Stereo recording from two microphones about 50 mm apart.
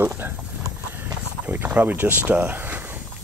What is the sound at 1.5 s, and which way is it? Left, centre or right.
Speech, right.